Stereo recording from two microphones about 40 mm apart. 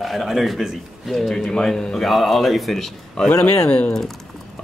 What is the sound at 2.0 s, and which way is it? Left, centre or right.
Speech, centre.